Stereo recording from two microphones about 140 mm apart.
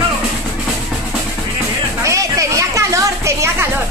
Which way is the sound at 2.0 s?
25° right (ahead or behind).